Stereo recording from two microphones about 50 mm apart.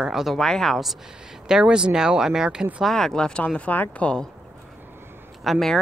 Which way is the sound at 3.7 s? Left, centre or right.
Left.